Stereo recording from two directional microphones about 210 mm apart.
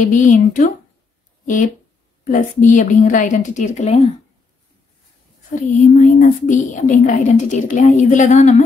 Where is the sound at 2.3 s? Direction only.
35° left (ahead or behind).